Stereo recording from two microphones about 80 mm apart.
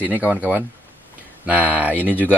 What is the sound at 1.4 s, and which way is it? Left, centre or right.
Speech, centre.